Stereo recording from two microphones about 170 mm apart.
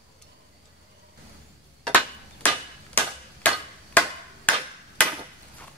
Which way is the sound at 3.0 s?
10° left (ahead or behind).